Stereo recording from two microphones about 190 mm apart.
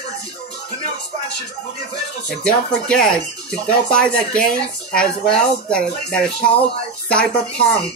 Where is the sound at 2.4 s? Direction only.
5° left (ahead or behind).